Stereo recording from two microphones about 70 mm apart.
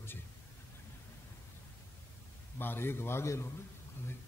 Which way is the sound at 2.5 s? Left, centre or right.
Left.